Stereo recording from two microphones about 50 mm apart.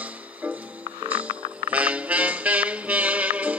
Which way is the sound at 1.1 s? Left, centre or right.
Right.